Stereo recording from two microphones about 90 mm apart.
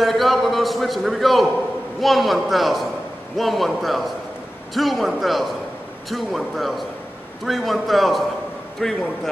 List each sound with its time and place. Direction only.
0.0 s a man's voice: centre (ahead or behind)